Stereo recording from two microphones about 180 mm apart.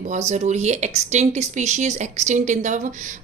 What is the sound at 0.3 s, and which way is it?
A woman's voice, 40° right (ahead or behind).